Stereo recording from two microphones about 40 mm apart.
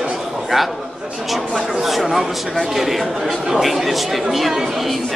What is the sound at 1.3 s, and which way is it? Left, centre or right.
Speech, centre.